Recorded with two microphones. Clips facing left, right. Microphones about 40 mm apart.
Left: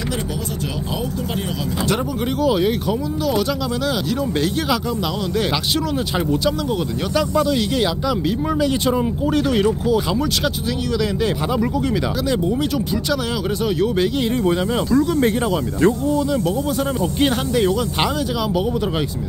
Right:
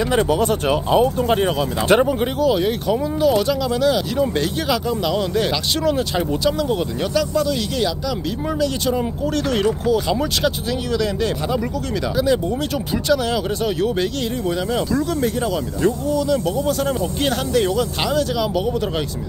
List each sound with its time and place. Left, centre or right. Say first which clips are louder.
0.9 s speech: right 10 dB; right
2.4 s speech: left 1 dB; centre
5.4 s speech: right 1 dB; centre
7.2 s speech: left 2 dB; centre
9.5 s speech: right 2 dB; centre
17.2 s speech: left 2 dB; centre